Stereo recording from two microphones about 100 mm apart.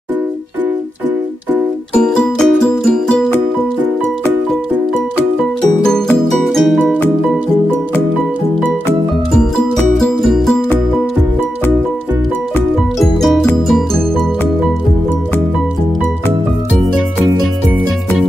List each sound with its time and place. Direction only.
2.0 s music: 5° left (ahead or behind)
5.9 s music: 5° left (ahead or behind)
9.9 s music: centre (ahead or behind)
13.0 s music: 5° left (ahead or behind)